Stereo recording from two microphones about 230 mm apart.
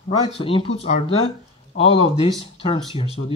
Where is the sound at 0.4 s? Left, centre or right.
Left.